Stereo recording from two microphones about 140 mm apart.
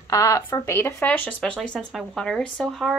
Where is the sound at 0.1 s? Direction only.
25° left (ahead or behind).